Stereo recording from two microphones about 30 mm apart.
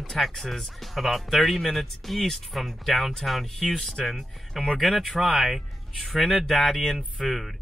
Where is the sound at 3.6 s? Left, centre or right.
Centre.